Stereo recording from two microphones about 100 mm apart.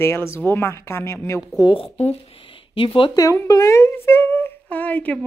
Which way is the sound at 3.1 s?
35° left (ahead or behind).